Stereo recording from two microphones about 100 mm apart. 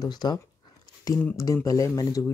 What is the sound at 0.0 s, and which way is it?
Speech, 45° left (ahead or behind).